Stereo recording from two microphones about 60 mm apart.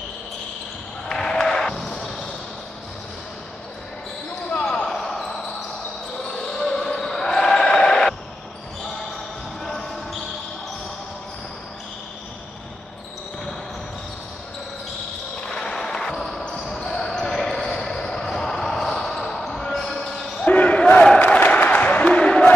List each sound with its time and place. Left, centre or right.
1.0 s basketball bounce: centre
4.6 s basketball bounce: centre
9.6 s basketball bounce: centre
15.4 s basketball bounce: centre
20.4 s basketball bounce: left
21.2 s a sound: left